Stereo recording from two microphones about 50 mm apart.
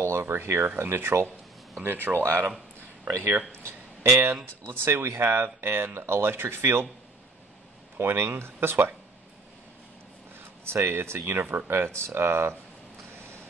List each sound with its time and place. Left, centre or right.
0.0 s speech: right
4.0 s speech: right
4.6 s speech: right
5.9 s speech: right
8.0 s speech: right
10.6 s speech: right